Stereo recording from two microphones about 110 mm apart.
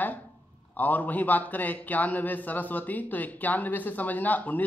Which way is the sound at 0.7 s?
15° left (ahead or behind).